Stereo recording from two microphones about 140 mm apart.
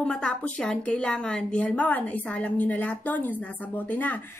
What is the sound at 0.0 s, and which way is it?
A woman's voice, 5° left (ahead or behind).